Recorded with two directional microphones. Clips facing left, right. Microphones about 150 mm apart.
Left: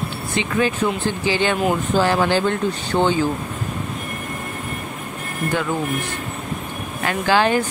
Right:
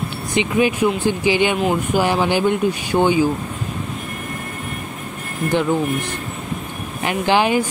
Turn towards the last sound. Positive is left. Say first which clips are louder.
# right 1 dB
turn(degrees=-15)  # may be behind; listen again after turning